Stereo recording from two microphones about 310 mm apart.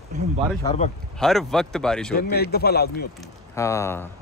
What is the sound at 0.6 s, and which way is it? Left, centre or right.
Speech, centre.